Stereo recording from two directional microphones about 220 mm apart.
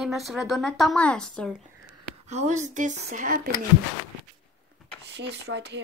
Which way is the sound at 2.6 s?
35° right (ahead or behind).